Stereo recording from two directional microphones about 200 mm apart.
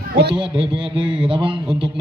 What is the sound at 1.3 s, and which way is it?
Speech, 25° right (ahead or behind).